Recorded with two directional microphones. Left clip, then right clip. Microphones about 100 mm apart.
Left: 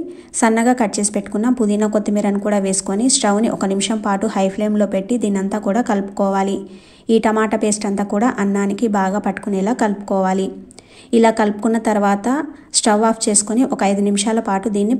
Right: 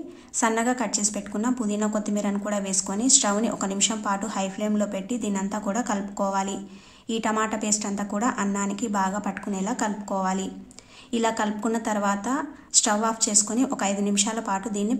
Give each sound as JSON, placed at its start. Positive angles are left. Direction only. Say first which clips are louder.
{"t": 0.4, "sound": "a woman's voice", "louder": "left 9 dB", "side_deg": 45}